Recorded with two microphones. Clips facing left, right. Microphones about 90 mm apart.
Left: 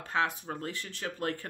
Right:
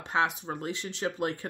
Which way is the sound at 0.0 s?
20° right (ahead or behind).